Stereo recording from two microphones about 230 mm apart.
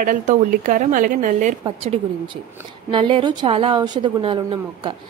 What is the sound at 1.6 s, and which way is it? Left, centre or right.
A woman's voice, right.